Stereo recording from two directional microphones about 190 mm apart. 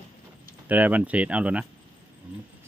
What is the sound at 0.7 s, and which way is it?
Speech, 10° right (ahead or behind).